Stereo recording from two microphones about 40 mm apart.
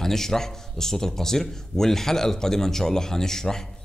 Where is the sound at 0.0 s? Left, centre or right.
Centre.